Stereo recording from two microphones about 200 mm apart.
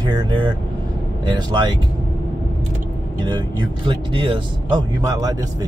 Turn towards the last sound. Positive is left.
turn(degrees=-20)  # may be behind; listen again after turning